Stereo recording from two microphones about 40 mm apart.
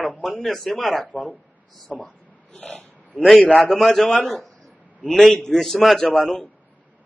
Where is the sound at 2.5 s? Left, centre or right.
Left.